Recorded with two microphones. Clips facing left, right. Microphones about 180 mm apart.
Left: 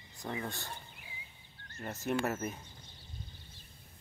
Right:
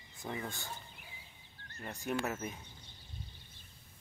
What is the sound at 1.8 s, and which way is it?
Speech, centre (ahead or behind).